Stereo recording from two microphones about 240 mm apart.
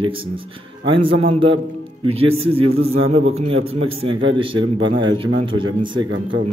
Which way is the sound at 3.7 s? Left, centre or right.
Right.